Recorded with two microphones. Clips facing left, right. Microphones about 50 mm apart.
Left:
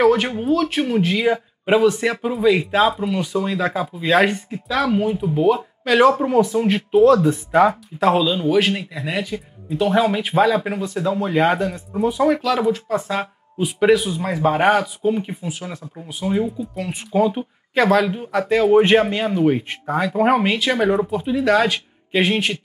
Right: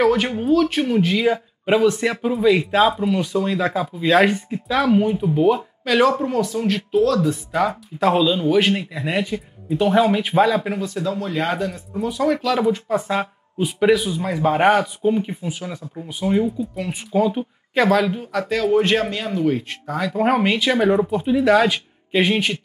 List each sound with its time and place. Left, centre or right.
0.0 s speech: centre
6.1 s speech: centre
8.0 s speech: centre
11.1 s speech: left
12.4 s speech: centre
18.2 s speech: centre
20.2 s speech: centre